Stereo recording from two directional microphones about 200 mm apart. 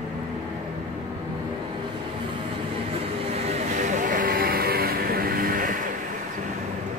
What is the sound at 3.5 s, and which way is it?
Vehicle, 40° right (ahead or behind).